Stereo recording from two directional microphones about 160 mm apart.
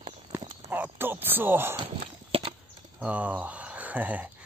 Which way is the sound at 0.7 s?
10° right (ahead or behind).